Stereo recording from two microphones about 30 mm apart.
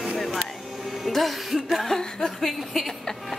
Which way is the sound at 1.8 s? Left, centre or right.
Centre.